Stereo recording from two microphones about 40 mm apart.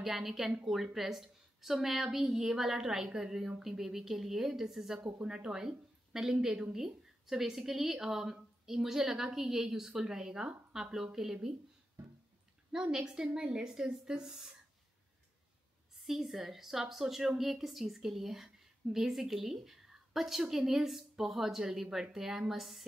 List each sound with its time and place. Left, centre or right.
0.0 s a woman's voice: centre
5.0 s a woman's voice: right
12.7 s a woman's voice: centre
16.0 s a woman's voice: centre